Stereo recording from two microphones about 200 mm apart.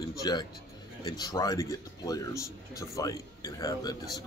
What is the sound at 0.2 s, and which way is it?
Speech, 20° left (ahead or behind).